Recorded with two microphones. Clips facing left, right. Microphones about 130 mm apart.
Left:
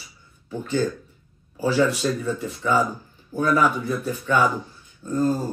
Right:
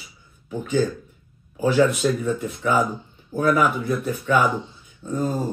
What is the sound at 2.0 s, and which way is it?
Speech, centre (ahead or behind).